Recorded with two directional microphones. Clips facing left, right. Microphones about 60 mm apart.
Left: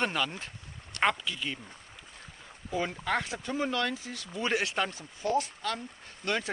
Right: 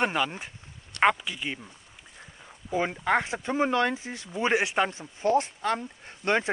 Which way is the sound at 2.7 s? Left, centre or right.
Right.